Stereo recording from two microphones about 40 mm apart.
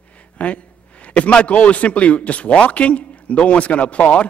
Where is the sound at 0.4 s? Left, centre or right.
Left.